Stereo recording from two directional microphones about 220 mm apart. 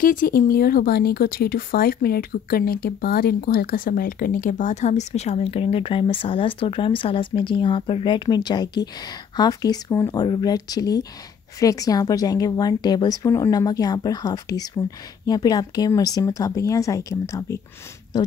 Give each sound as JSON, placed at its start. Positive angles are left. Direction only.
{"t": 0.0, "sound": "a woman's voice", "side_deg": 40}